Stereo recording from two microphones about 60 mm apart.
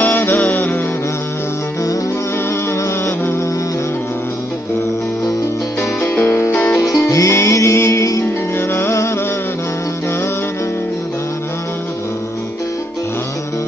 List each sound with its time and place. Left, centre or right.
0.0 s music: left
6.1 s music: left
6.7 s music: left
8.5 s music: left